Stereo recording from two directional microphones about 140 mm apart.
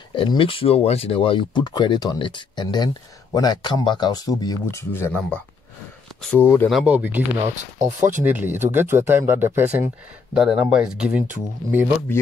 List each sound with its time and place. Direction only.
0.1 s speech: 40° left (ahead or behind); by 6.7 s 15° left (ahead or behind)
6.7 s speech: 10° right (ahead or behind)
7.5 s speech: 60° right (ahead or behind)
8.2 s speech: 10° right (ahead or behind)